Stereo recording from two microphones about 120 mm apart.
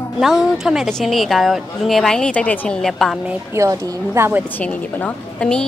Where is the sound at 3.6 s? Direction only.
25° right (ahead or behind).